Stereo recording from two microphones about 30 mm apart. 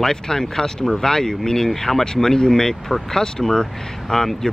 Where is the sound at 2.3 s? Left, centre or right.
Left.